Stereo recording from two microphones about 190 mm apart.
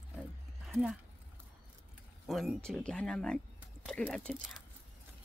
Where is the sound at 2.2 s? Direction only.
Centre (ahead or behind).